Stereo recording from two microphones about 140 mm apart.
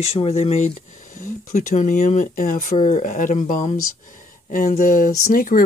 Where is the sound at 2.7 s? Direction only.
55° left (ahead or behind).